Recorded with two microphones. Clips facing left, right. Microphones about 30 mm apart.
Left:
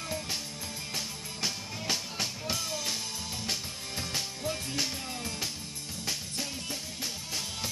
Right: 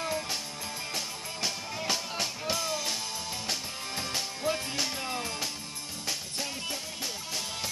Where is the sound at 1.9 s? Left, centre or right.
Centre.